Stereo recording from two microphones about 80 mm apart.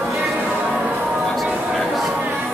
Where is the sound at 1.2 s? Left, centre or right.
Centre.